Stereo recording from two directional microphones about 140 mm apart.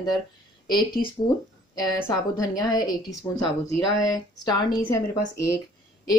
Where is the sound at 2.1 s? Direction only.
25° left (ahead or behind).